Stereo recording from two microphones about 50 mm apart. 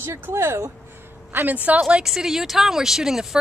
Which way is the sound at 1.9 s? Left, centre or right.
Centre.